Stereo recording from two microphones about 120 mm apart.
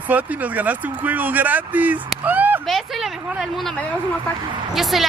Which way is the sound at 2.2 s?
15° right (ahead or behind).